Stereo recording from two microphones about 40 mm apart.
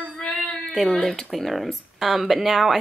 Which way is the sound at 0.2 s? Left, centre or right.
Left.